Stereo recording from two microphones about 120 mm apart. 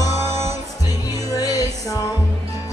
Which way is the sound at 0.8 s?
30° left (ahead or behind).